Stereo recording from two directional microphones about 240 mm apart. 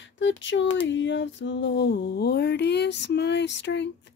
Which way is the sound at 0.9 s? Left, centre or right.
Left.